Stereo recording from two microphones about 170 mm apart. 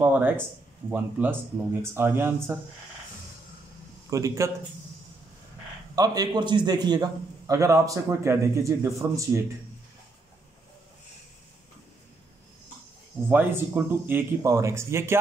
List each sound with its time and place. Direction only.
0.0 s speech: 10° right (ahead or behind)
4.1 s a man's voice: 20° right (ahead or behind)
5.9 s a man's voice: 25° right (ahead or behind)
13.3 s speech: 10° right (ahead or behind)